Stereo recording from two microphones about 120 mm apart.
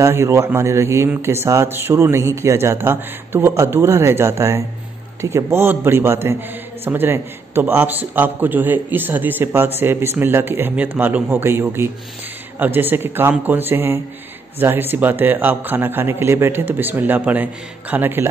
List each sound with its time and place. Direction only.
0.0 s a man's voice: 20° right (ahead or behind)